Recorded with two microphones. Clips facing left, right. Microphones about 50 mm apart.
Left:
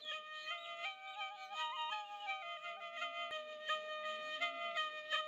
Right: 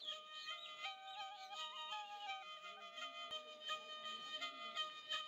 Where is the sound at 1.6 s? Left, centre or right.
Left.